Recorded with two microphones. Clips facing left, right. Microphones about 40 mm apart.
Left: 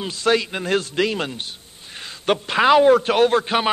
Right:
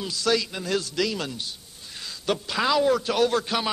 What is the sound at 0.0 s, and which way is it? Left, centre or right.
A man's voice, left.